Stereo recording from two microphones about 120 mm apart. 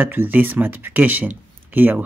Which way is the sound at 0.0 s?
15° right (ahead or behind).